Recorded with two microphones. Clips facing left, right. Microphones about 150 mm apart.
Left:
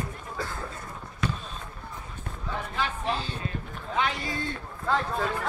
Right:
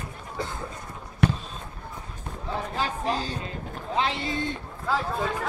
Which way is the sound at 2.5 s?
35° right (ahead or behind).